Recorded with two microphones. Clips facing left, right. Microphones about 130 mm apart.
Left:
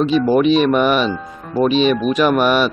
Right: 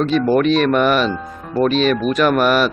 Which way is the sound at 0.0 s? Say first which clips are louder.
Left 1 dB; centre (ahead or behind).